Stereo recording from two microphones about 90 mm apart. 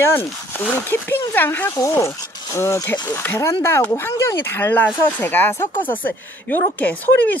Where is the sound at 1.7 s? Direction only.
35° left (ahead or behind).